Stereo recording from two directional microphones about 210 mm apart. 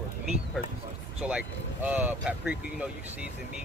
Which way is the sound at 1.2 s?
5° right (ahead or behind).